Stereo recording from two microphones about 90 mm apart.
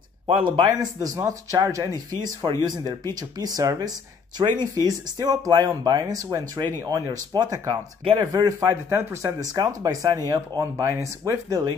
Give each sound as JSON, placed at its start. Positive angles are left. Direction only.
{"t": 0.3, "sound": "speech", "side_deg": -70}
{"t": 1.0, "sound": "speech", "side_deg": -40}
{"t": 8.0, "sound": "speech", "side_deg": -80}
{"t": 8.3, "sound": "speech", "side_deg": -40}
{"t": 9.4, "sound": "speech", "side_deg": -40}